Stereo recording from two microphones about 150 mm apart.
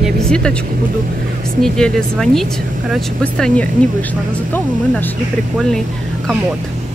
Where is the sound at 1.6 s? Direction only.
5° left (ahead or behind).